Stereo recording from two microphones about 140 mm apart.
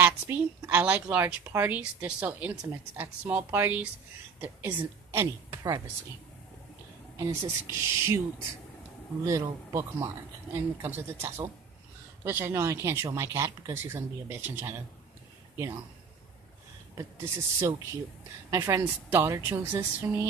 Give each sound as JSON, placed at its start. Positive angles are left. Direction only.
{"t": 0.0, "sound": "a woman's voice", "side_deg": -15}
{"t": 7.2, "sound": "speech", "side_deg": -20}
{"t": 9.2, "sound": "a woman's voice", "side_deg": -25}
{"t": 16.9, "sound": "speech", "side_deg": -15}